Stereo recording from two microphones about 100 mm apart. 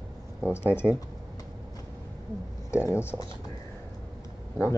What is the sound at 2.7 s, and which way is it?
Speech, 25° left (ahead or behind).